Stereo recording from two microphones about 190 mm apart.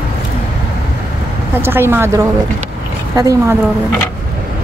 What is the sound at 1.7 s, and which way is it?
Speech, 10° right (ahead or behind).